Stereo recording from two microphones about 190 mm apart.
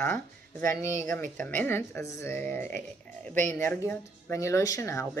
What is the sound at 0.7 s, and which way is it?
Speech, 15° left (ahead or behind).